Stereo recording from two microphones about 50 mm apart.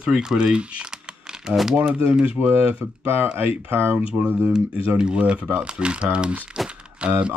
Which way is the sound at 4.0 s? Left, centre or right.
Right.